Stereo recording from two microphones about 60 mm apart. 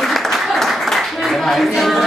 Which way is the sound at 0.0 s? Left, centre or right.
Centre.